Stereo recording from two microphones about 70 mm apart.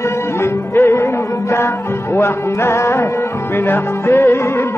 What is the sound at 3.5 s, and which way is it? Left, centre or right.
Music, left.